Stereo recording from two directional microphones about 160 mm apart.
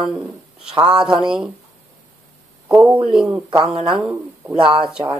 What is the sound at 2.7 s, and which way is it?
A man's voice, 10° right (ahead or behind).